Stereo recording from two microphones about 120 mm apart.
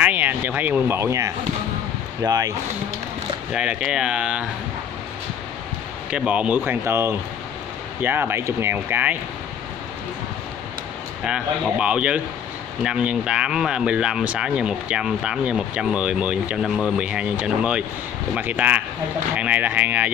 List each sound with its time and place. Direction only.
0.0 s speech: 15° right (ahead or behind); by 2.5 s 30° right (ahead or behind)
3.5 s speech: 10° right (ahead or behind)
6.0 s speech: 10° right (ahead or behind)
11.8 s speech: 10° right (ahead or behind)